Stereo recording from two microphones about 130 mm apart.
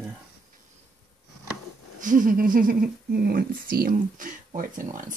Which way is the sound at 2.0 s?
90° right.